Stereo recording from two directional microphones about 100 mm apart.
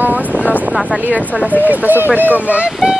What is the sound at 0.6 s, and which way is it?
Speech, 15° right (ahead or behind).